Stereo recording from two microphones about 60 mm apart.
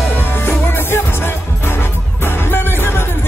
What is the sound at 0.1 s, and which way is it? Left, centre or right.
Music, left.